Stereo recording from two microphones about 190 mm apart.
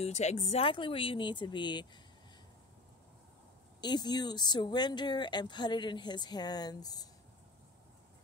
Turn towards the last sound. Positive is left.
turn(degrees=20)  # may be behind; listen again after turning